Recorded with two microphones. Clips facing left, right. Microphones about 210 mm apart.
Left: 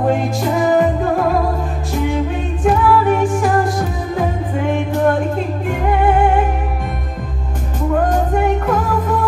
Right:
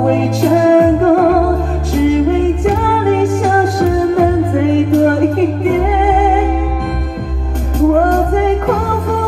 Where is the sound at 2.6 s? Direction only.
80° right.